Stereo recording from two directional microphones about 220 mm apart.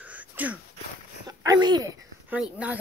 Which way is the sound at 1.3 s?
15° right (ahead or behind).